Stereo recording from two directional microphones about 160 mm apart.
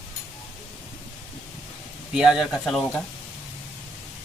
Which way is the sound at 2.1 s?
5° right (ahead or behind).